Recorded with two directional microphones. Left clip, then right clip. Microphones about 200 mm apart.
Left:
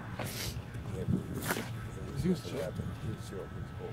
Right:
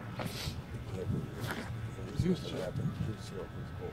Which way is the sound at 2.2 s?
20° left (ahead or behind).